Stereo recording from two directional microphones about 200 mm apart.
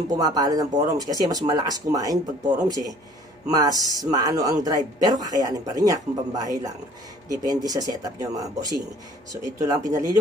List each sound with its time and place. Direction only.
0.1 s a man's voice: 20° right (ahead or behind)